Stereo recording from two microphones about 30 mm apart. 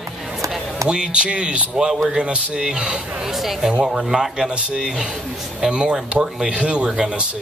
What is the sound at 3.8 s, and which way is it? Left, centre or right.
A man's voice, centre.